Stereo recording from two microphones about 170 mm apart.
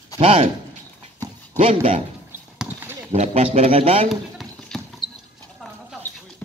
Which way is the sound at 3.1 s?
40° right (ahead or behind).